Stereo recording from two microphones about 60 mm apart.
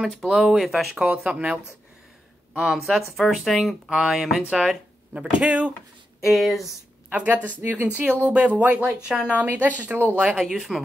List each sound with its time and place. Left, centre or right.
0.2 s speech: centre
5.1 s speech: centre
6.2 s speech: centre
7.1 s speech: right
9.4 s speech: right
10.1 s speech: centre